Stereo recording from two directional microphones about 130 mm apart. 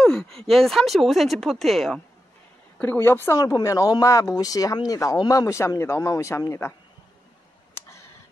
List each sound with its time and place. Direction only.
0.0 s a sound: 5° left (ahead or behind)
0.5 s speech: centre (ahead or behind)
2.8 s speech: 15° left (ahead or behind)